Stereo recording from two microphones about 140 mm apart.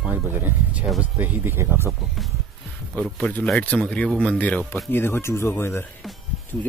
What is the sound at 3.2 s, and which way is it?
Speech, 5° left (ahead or behind).